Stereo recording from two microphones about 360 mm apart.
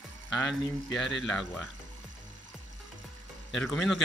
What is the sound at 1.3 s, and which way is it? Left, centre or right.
Speech, centre.